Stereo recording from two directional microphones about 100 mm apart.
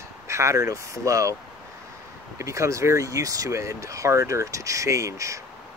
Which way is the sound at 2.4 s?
30° right (ahead or behind).